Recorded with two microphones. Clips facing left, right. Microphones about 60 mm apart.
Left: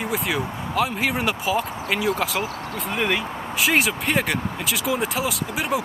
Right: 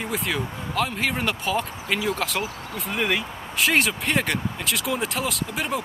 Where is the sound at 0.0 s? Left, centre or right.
Centre.